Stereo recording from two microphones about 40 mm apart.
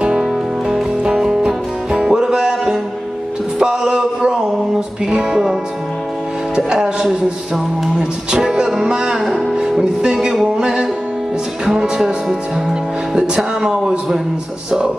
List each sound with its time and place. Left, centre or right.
0.0 s music: centre
1.0 s music: centre
1.4 s music: right
6.5 s speech: centre
7.1 s music: centre
8.0 s speech: centre
10.4 s music: centre
11.6 s speech: centre